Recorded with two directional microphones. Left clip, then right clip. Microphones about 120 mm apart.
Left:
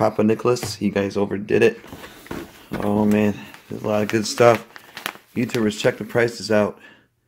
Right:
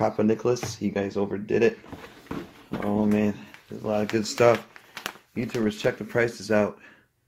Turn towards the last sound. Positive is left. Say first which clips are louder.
# left 4 dB
turn(degrees=5)  # may be behind; listen again after turning